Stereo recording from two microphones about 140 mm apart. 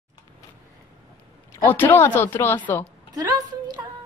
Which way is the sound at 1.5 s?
15° left (ahead or behind).